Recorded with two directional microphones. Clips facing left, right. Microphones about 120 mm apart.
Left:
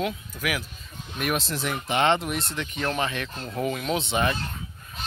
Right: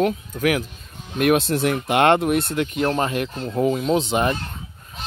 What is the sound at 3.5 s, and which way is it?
Speech, 25° right (ahead or behind).